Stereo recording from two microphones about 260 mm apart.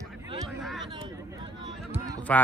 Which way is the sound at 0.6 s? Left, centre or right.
Centre.